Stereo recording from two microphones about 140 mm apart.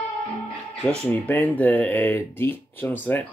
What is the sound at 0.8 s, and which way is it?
Speech, 10° left (ahead or behind).